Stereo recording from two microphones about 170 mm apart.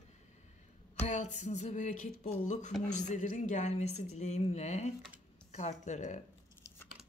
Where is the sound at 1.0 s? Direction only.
45° left (ahead or behind).